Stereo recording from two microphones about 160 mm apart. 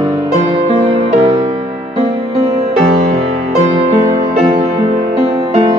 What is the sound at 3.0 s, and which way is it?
Music, 50° right (ahead or behind).